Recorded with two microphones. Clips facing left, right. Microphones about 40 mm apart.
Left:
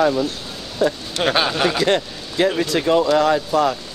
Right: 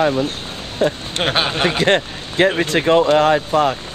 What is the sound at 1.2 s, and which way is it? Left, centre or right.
Speech, right.